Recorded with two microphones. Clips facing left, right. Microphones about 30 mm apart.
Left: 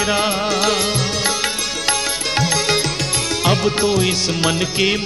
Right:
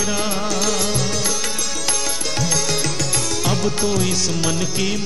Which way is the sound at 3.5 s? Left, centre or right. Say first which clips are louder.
Left 5 dB; left.